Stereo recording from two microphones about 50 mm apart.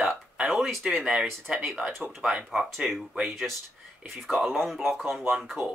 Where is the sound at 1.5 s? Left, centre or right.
Centre.